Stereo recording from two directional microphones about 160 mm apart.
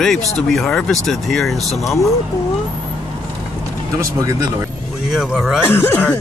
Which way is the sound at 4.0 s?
20° right (ahead or behind).